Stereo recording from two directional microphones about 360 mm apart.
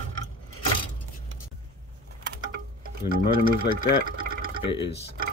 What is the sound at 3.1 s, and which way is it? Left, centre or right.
Speech, right.